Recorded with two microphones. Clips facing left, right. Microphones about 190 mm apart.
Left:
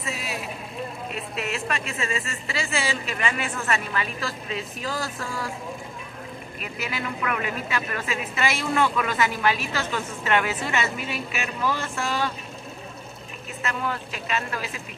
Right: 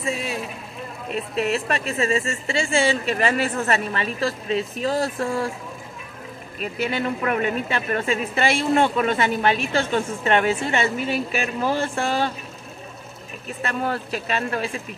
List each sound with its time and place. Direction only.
0.0 s a sound: 25° right (ahead or behind)
1.3 s a woman's voice: 30° right (ahead or behind)
6.6 s a woman's voice: 30° right (ahead or behind)
13.6 s a woman's voice: 35° right (ahead or behind)